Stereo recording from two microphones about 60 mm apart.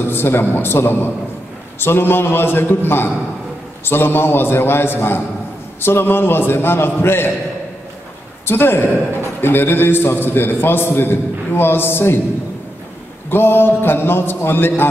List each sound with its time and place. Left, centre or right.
0.0 s a man's voice: left
8.5 s a man's voice: left
13.3 s a man's voice: left